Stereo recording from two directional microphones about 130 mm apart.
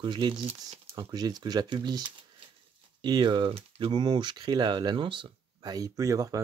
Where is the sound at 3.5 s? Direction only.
50° right (ahead or behind).